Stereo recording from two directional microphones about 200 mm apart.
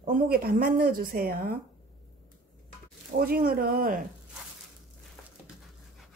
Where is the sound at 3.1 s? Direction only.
50° right (ahead or behind).